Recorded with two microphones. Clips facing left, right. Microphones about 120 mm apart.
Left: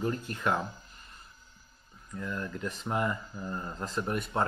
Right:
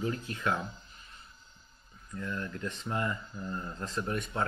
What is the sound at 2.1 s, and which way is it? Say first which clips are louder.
Speech: left 1 dB; 5° left (ahead or behind).